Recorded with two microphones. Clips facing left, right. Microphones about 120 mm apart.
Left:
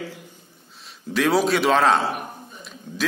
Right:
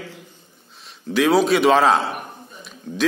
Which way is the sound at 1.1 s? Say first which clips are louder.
Right 3 dB; centre (ahead or behind).